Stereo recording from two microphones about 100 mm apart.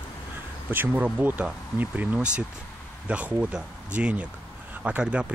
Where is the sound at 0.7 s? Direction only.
20° right (ahead or behind).